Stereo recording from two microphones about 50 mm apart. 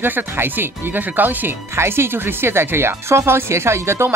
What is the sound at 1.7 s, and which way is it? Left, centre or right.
Speech, right.